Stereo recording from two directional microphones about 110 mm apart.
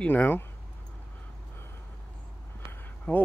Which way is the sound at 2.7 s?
15° left (ahead or behind).